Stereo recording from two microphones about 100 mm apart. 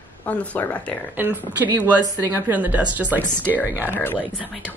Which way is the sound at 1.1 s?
20° right (ahead or behind).